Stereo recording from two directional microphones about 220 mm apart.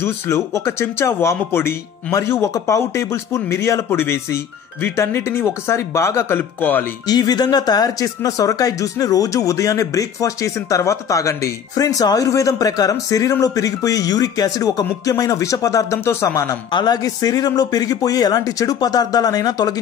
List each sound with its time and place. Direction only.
0.0 s speech: 15° left (ahead or behind)